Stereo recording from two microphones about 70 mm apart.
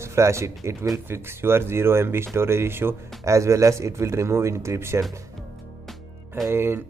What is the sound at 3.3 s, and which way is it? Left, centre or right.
Speech, right.